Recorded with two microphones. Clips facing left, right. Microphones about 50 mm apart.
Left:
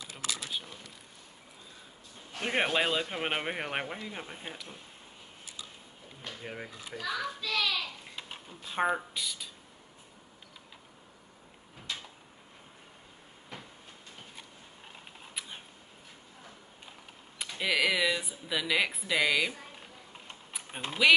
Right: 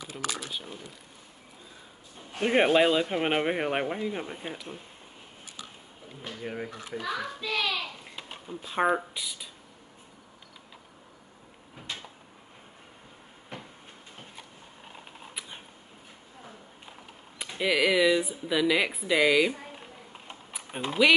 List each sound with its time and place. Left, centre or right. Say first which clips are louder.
2.3 s speech: right 7 dB; centre
6.2 s speech: right 5 dB; centre
7.0 s a child's voice: right 1 dB; centre
8.0 s a sound: right 1 dB; centre
8.6 s speech: right 4 dB; centre
14.9 s camera: right 4 dB; centre
17.6 s speech: right 4 dB; centre